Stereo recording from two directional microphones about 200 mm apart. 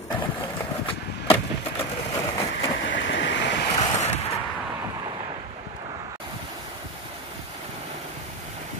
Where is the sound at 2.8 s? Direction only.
70° left (ahead or behind).